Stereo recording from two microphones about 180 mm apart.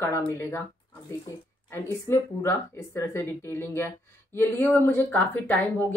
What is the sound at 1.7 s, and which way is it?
Speech, 15° left (ahead or behind).